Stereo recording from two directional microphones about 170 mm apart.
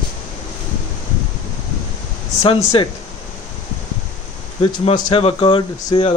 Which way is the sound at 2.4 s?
30° left (ahead or behind).